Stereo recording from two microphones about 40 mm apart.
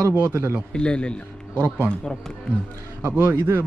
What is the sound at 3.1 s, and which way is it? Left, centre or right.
Speech, right.